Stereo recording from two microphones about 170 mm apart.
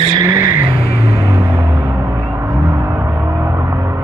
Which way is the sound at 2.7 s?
15° right (ahead or behind).